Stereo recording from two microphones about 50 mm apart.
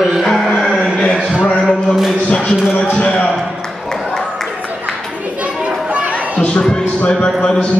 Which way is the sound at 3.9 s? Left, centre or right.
Centre.